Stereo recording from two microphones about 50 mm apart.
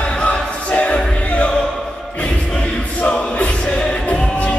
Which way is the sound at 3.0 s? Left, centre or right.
Left.